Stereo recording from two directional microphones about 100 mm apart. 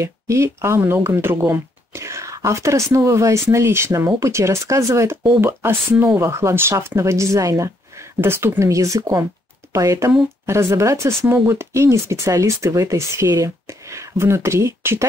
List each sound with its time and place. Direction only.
0.0 s speech: 30° right (ahead or behind)